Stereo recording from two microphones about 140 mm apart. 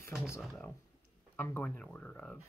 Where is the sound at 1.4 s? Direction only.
10° left (ahead or behind).